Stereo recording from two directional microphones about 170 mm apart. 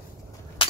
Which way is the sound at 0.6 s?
30° left (ahead or behind).